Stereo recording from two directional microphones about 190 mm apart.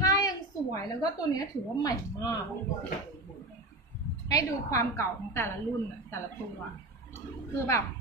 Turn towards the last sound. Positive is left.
turn(degrees=15)  # may be behind; listen again after turning